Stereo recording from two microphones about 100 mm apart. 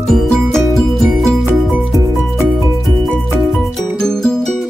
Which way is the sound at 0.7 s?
Centre (ahead or behind).